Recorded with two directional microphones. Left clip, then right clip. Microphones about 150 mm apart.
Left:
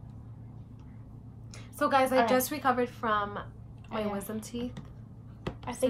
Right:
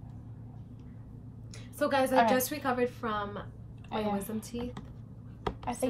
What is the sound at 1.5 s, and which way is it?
A woman's voice, 10° left (ahead or behind).